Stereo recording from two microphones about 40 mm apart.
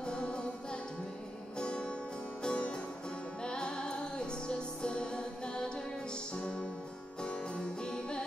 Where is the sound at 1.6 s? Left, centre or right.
Left.